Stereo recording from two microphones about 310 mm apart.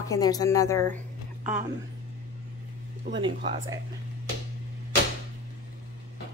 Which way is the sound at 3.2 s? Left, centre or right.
Centre.